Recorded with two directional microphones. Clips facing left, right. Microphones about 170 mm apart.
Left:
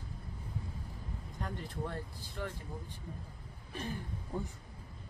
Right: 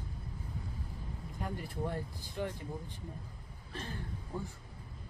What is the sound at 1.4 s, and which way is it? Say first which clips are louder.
Speech: right 2 dB; 15° right (ahead or behind).